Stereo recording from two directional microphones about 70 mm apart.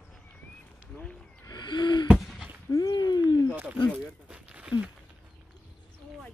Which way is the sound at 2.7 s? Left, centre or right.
Left.